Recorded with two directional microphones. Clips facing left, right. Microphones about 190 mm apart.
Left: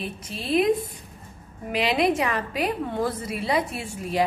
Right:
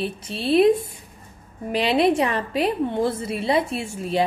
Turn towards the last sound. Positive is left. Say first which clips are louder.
# right 3 dB
turn(degrees=-25)  # may be behind; listen again after turning